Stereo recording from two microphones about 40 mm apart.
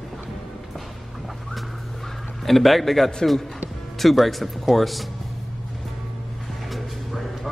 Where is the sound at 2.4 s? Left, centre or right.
Centre.